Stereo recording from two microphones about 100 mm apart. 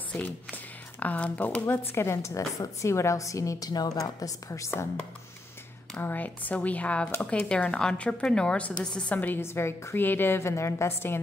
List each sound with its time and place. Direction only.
0.1 s speech: 15° left (ahead or behind)
1.9 s a woman's voice: 25° left (ahead or behind)
5.9 s a woman's voice: 20° left (ahead or behind)